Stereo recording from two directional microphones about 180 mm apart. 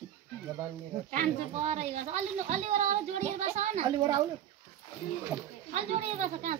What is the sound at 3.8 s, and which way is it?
Speech, 25° right (ahead or behind).